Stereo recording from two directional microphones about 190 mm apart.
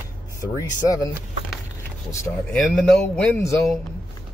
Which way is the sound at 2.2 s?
5° left (ahead or behind).